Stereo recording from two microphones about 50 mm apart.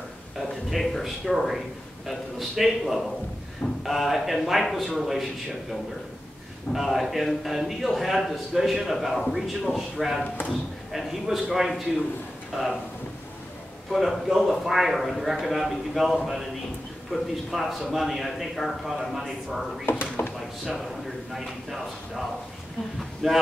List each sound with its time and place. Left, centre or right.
0.4 s a man's voice: centre
6.7 s a man's voice: centre
13.9 s a man's voice: centre
17.1 s a man's voice: centre
19.9 s a sound: left
21.3 s a man's voice: centre